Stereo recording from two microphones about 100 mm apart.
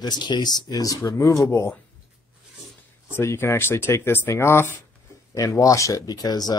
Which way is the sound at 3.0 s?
25° left (ahead or behind).